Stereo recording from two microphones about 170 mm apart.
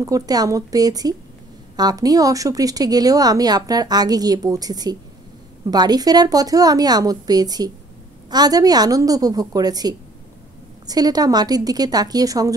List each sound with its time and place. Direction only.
0.0 s a woman's voice: 20° right (ahead or behind)